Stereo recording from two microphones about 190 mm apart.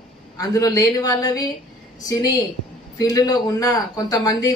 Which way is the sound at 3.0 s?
20° left (ahead or behind).